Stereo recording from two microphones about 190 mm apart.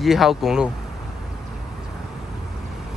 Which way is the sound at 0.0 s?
Centre (ahead or behind).